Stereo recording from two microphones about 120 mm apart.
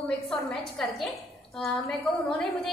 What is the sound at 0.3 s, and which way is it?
Speech, 5° left (ahead or behind).